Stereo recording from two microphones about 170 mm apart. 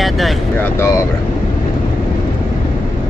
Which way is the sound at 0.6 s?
15° left (ahead or behind).